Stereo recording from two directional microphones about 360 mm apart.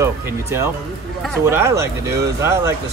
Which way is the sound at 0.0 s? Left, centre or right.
Centre.